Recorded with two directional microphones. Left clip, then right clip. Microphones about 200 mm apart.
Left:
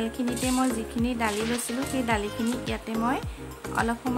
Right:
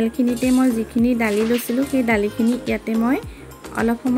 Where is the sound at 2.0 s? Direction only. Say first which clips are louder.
Right 8 dB; 15° right (ahead or behind).